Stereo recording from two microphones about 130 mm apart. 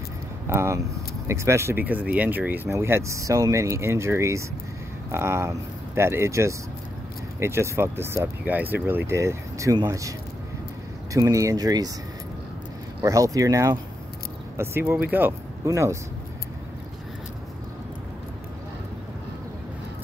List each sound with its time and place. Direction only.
0.5 s speech: 20° right (ahead or behind)
11.1 s speech: 25° right (ahead or behind)
13.0 s speech: 25° right (ahead or behind)